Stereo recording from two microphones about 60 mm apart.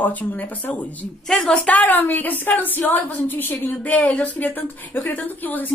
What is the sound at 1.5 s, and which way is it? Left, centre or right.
A woman's voice, left.